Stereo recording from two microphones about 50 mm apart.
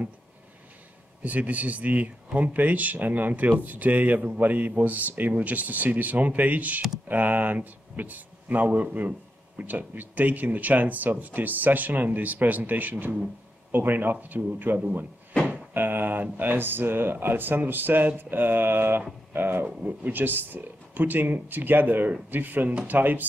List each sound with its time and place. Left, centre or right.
1.2 s speech: right
19.6 s speech: right